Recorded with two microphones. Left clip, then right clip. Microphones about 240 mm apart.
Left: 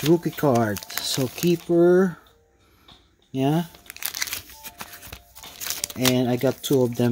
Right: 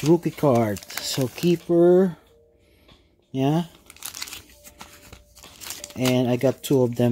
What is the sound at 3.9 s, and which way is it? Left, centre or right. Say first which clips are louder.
Crumpling: left 6 dB; left.